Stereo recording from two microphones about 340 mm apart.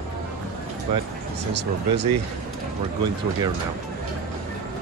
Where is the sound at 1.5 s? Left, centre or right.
Right.